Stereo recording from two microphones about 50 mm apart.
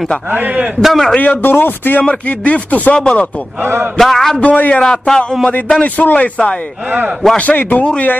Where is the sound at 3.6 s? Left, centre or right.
Right.